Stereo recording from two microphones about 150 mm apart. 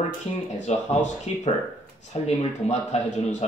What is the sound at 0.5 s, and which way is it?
Speech, 50° left (ahead or behind).